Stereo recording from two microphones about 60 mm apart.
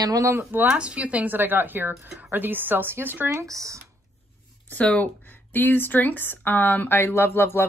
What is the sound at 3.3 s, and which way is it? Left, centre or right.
Speech, right.